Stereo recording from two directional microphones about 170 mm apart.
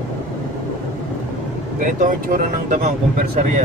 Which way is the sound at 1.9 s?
55° right (ahead or behind).